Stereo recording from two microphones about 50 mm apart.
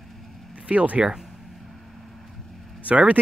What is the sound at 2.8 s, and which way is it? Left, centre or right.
Speech, right.